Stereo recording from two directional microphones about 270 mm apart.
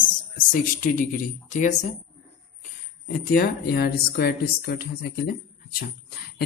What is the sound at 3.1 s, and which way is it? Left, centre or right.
A woman's voice, left.